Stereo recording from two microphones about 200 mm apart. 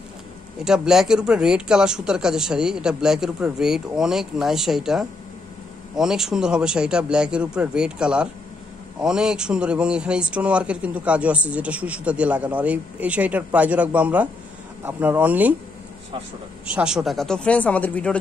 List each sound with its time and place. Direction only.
0.7 s speech: 5° right (ahead or behind)
16.6 s speech: 5° right (ahead or behind)